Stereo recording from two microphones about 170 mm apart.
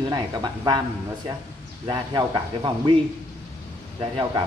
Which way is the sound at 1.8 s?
25° right (ahead or behind).